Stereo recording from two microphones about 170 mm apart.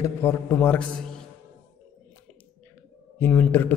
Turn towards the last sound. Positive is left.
turn(degrees=10)  # may be behind; listen again after turning